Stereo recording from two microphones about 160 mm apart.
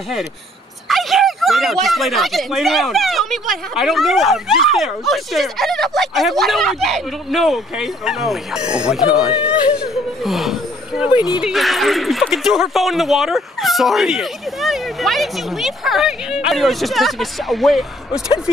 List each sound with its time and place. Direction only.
0.8 s speech: centre (ahead or behind)